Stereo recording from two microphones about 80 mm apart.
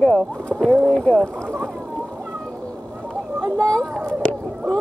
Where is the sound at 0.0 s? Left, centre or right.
Centre.